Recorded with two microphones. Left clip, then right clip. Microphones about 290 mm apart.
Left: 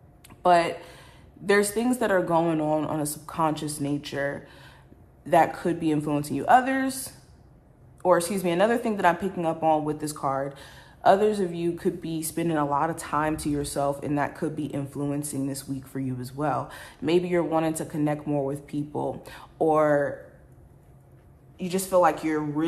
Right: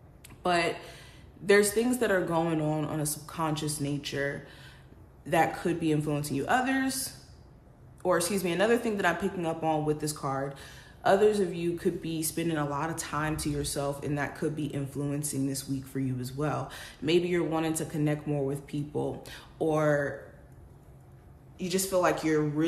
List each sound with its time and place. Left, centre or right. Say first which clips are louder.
0.4 s speech: left 7 dB; centre
21.5 s speech: left 6 dB; centre